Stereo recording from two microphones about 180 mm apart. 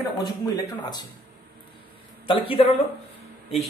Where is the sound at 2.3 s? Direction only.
30° left (ahead or behind).